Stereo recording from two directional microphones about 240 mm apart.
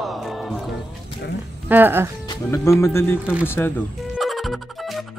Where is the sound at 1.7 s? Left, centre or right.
Centre.